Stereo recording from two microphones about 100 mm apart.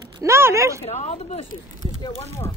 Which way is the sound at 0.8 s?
90° left.